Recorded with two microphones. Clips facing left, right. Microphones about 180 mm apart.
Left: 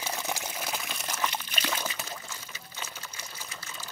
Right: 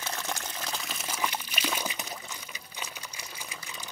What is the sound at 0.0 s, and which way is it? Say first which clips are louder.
Water: left 2 dB; 10° left (ahead or behind).